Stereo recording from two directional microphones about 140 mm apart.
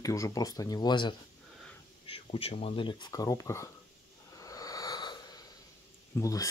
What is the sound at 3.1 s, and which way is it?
Speech, 25° left (ahead or behind).